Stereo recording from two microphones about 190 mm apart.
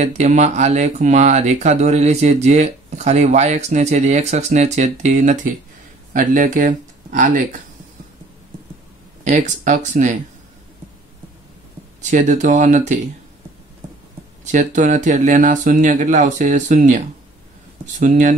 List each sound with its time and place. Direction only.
0.0 s speech: 40° right (ahead or behind)
9.2 s speech: 40° right (ahead or behind)
12.0 s speech: 40° right (ahead or behind)
14.4 s speech: 40° right (ahead or behind)